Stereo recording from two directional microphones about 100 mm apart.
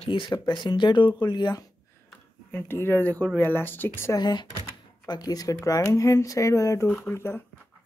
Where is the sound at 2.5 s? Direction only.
20° left (ahead or behind).